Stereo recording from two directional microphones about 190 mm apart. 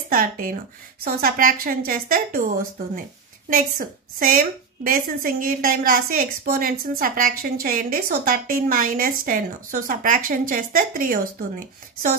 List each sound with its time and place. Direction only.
0.1 s a woman's voice: 45° right (ahead or behind)